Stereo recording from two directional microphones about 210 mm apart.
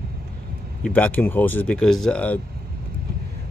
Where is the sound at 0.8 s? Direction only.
5° left (ahead or behind).